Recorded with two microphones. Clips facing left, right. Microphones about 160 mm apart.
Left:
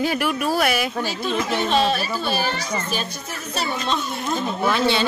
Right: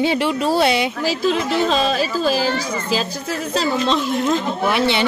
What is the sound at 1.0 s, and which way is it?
Speech, 90° right.